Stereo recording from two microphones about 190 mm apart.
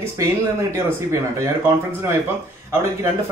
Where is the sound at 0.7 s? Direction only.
15° right (ahead or behind).